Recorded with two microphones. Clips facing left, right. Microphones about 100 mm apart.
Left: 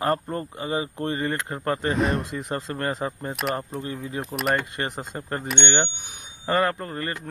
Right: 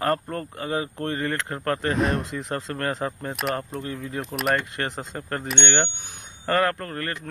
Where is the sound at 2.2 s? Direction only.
10° left (ahead or behind).